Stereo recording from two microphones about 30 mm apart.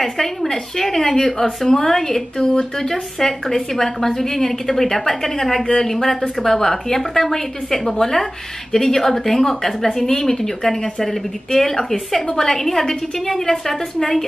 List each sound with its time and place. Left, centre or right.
0.0 s a woman's voice: centre
5.7 s a woman's voice: left